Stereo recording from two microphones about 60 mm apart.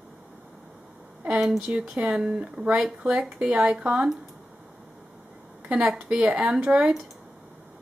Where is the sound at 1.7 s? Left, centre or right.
Right.